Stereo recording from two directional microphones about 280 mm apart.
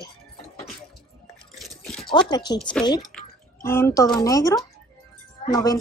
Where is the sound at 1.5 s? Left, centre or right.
Centre.